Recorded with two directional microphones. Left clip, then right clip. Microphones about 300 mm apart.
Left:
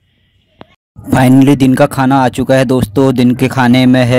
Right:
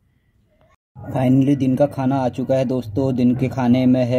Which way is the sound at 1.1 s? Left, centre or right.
Left.